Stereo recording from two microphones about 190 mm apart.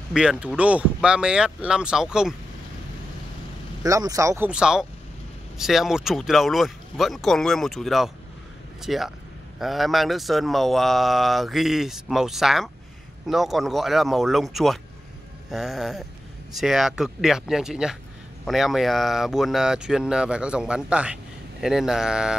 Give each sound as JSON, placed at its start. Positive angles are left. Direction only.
{"t": 0.1, "sound": "speech", "side_deg": -5}
{"t": 3.8, "sound": "speech", "side_deg": -20}
{"t": 4.5, "sound": "speech", "side_deg": -5}